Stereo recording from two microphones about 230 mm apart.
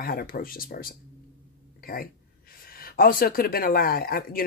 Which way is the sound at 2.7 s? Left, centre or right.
Left.